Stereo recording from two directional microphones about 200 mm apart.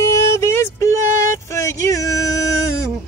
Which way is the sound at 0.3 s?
15° left (ahead or behind).